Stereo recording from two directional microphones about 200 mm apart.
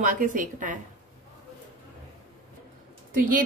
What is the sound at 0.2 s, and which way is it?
Speech, 40° right (ahead or behind).